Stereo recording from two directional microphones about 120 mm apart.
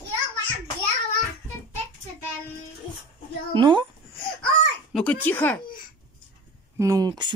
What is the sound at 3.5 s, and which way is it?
Speech, 40° right (ahead or behind).